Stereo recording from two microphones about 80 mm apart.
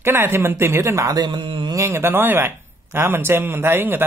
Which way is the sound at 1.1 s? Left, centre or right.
Right.